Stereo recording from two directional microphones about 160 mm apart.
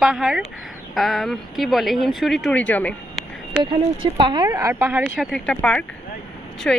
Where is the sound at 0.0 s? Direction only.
5° right (ahead or behind).